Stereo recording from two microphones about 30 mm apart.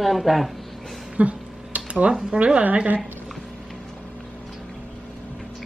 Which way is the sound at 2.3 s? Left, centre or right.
Right.